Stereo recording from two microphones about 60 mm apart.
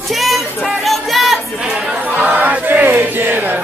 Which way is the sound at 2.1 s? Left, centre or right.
Right.